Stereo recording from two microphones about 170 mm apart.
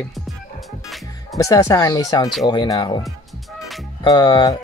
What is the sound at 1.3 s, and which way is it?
Speech, 20° left (ahead or behind).